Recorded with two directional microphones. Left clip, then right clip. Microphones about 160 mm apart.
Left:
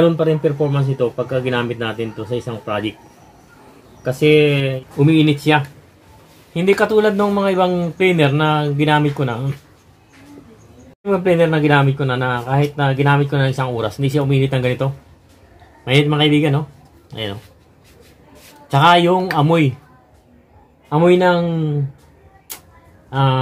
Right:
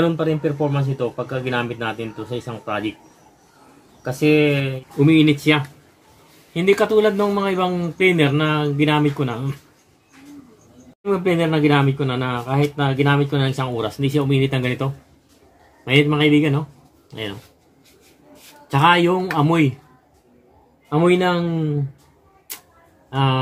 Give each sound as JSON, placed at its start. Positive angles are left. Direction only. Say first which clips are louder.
{"t": 0.0, "sound": "a man's voice", "louder": "left 5 dB", "side_deg": -15}
{"t": 4.0, "sound": "speech", "louder": "left 4 dB", "side_deg": -20}
{"t": 4.9, "sound": "speech", "louder": "even", "side_deg": 5}
{"t": 11.1, "sound": "speech", "louder": "left 4 dB", "side_deg": 0}
{"t": 18.7, "sound": "speech", "louder": "left 3 dB", "side_deg": 5}
{"t": 20.9, "sound": "speech", "louder": "left 4 dB", "side_deg": 0}
{"t": 23.0, "sound": "speech", "louder": "left 3 dB", "side_deg": 0}